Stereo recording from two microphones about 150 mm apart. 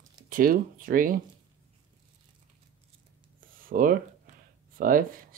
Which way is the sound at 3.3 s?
65° right (ahead or behind).